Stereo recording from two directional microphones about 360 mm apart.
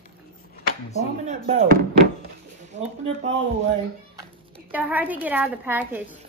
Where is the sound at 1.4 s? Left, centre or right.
Right.